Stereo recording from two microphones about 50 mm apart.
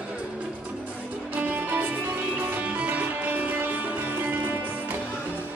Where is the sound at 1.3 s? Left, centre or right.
Right.